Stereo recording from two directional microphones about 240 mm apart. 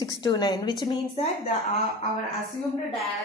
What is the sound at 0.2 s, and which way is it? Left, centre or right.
A woman's voice, centre.